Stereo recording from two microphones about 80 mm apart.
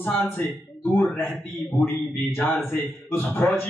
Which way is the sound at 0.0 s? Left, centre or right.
Left.